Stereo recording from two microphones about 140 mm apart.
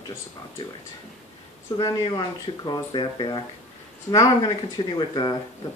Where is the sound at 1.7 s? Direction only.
30° left (ahead or behind).